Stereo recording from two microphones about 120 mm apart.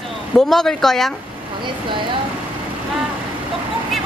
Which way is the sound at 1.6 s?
40° right (ahead or behind).